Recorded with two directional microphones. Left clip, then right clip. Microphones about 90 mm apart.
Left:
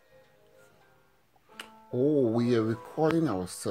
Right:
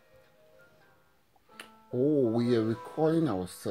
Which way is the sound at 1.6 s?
20° right (ahead or behind).